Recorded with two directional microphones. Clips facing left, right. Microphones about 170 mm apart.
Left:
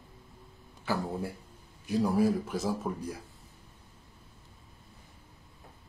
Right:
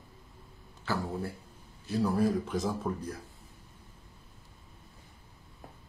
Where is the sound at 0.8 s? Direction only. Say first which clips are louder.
Left 1 dB; 15° left (ahead or behind).